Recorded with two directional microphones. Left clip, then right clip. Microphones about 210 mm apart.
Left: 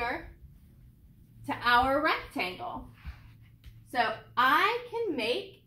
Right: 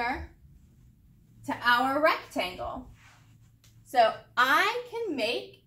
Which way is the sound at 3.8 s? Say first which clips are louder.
Right 6 dB; 10° right (ahead or behind).